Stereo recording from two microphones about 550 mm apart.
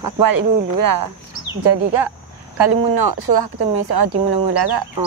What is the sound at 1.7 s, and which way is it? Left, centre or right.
Speech, right.